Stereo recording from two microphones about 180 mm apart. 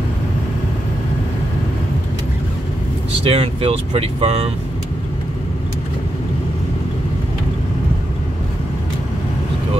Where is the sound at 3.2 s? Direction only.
30° right (ahead or behind).